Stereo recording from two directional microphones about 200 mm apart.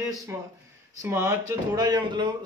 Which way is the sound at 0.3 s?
15° right (ahead or behind).